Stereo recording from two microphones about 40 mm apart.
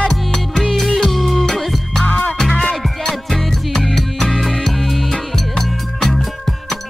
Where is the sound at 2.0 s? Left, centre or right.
Left.